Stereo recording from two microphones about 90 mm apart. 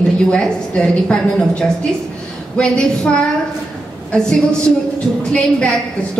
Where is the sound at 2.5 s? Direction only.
10° left (ahead or behind).